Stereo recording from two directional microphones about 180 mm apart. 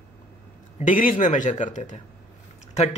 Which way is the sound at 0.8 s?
50° left (ahead or behind).